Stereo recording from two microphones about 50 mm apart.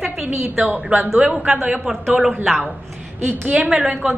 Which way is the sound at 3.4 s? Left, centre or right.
Right.